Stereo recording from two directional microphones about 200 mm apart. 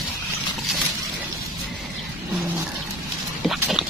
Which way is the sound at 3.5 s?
Centre (ahead or behind).